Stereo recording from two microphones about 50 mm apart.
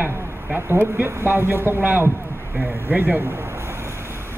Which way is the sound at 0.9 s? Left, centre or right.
Right.